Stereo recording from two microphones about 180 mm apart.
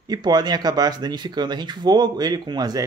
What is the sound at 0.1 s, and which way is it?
Speech, 25° right (ahead or behind).